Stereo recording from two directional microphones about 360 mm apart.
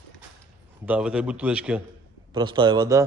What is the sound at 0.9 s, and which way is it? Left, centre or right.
A man's voice, centre.